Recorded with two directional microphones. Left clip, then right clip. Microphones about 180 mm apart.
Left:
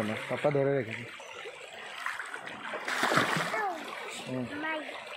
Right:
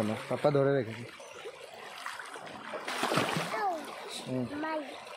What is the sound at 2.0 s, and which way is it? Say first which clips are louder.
Boat: left 5 dB; 15° right (ahead or behind).